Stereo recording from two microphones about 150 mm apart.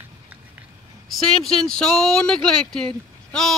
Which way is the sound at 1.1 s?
Centre (ahead or behind).